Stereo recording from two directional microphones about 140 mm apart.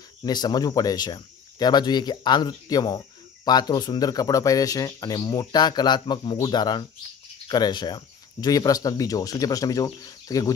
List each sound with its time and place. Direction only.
0.2 s speech: 30° left (ahead or behind)